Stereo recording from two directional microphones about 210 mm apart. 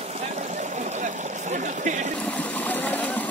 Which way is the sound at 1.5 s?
35° right (ahead or behind).